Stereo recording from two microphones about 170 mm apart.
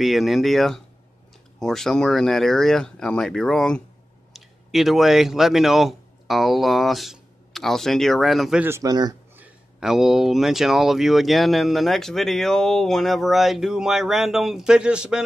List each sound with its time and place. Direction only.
0.0 s speech: centre (ahead or behind)
8.6 s speech: 20° right (ahead or behind)
9.4 s speech: centre (ahead or behind)